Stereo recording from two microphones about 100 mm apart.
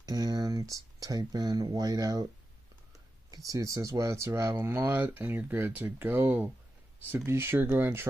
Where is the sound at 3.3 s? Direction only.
35° right (ahead or behind).